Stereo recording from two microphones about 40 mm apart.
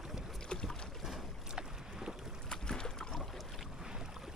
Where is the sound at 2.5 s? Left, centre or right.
Centre.